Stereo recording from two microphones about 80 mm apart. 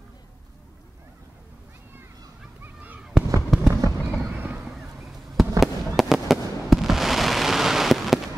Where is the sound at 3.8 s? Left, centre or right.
Right.